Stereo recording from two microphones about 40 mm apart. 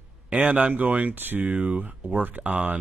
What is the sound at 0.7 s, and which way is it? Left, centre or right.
Speech, right.